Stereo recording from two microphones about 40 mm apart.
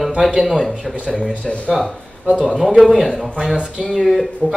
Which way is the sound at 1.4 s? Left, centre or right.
Left.